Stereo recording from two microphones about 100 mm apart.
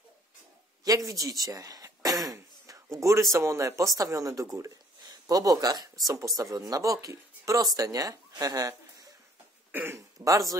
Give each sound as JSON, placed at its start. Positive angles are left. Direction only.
{"t": 0.8, "sound": "speech", "side_deg": -35}
{"t": 1.4, "sound": "throat clearing", "side_deg": -35}
{"t": 3.3, "sound": "speech", "side_deg": -30}
{"t": 9.7, "sound": "speech", "side_deg": -20}
{"t": 9.9, "sound": "speech", "side_deg": -35}